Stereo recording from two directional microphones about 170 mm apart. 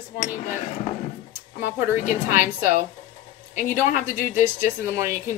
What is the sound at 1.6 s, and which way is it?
Speech, 55° left (ahead or behind).